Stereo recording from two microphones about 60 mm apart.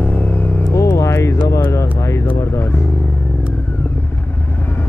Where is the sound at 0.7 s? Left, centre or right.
Left.